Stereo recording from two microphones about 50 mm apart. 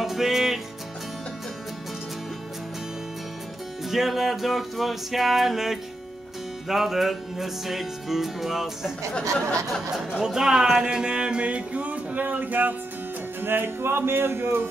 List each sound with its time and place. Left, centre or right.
0.0 s music: centre
3.9 s music: centre
9.8 s speech: centre; by 12.7 s right
13.4 s music: right